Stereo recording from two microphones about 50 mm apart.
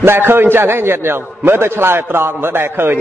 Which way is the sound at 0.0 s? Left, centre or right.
Right.